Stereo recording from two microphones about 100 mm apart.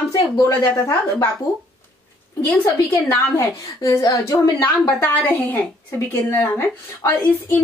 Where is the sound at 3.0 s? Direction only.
30° left (ahead or behind).